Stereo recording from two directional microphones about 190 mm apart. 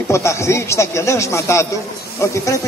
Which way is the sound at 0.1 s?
15° left (ahead or behind).